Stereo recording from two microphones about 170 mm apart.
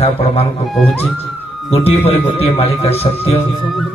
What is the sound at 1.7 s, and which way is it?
A man's voice, 35° left (ahead or behind).